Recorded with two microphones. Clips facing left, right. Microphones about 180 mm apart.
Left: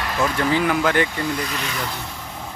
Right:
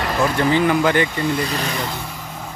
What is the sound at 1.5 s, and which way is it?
Speech, 35° right (ahead or behind).